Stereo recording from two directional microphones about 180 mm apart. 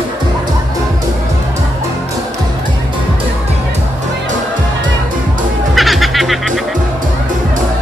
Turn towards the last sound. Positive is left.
turn(degrees=0)  # may be behind; listen again after turning